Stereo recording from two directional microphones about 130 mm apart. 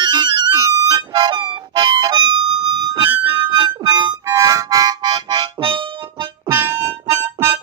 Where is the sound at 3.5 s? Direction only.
30° right (ahead or behind).